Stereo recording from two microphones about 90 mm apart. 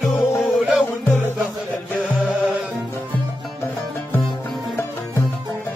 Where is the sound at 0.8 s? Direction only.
20° left (ahead or behind).